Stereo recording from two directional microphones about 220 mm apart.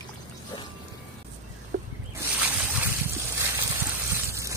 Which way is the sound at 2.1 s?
10° right (ahead or behind).